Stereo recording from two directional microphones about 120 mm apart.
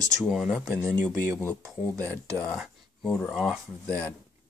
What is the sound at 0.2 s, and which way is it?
Speech, 5° right (ahead or behind).